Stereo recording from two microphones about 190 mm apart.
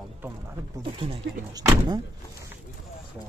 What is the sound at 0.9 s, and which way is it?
Speech, 25° right (ahead or behind).